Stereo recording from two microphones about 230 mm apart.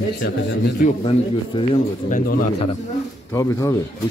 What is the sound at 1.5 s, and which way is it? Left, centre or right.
Speech, centre.